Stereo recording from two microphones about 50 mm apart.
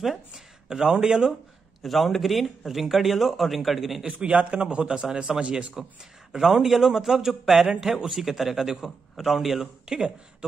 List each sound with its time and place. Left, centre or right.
0.0 s a sound: centre
1.8 s a man's voice: centre
4.0 s a man's voice: right
6.3 s a man's voice: centre